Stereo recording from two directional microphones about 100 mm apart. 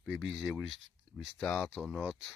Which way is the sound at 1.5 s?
15° left (ahead or behind).